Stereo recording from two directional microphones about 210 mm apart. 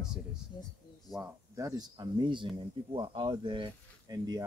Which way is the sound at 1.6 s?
15° right (ahead or behind).